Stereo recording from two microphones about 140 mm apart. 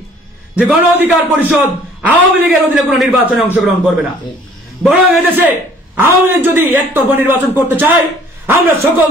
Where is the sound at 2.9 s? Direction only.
Centre (ahead or behind).